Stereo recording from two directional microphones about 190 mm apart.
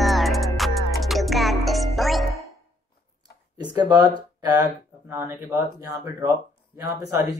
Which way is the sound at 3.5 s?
20° right (ahead or behind).